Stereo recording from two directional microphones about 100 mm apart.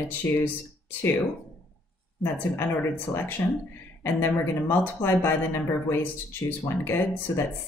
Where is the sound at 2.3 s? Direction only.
20° left (ahead or behind).